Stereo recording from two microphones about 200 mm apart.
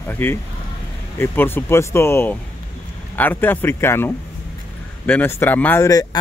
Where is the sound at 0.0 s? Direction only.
10° left (ahead or behind).